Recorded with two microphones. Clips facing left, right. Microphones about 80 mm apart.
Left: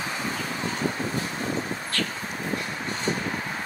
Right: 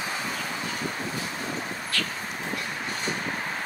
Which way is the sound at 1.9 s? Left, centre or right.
Left.